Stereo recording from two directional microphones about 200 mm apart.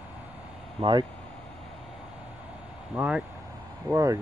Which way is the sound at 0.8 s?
25° right (ahead or behind).